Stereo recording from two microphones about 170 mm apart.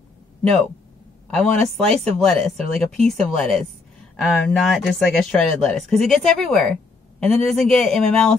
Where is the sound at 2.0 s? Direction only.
5° left (ahead or behind).